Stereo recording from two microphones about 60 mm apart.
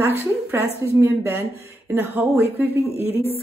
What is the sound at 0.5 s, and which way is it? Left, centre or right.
Speech, right.